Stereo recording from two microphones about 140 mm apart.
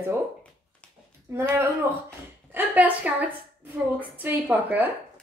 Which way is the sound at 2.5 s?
10° right (ahead or behind).